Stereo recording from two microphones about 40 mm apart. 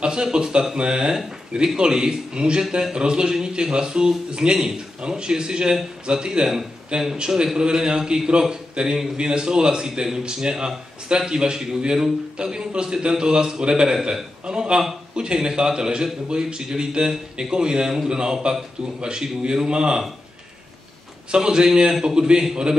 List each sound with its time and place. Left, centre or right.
0.0 s a man's voice: right
21.3 s a man's voice: right